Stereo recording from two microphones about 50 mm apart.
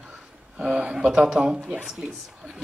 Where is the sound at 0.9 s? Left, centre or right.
Centre.